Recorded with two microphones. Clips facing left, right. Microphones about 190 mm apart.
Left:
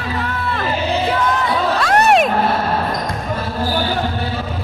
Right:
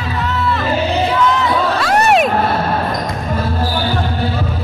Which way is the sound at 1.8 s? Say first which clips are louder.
Even; centre (ahead or behind).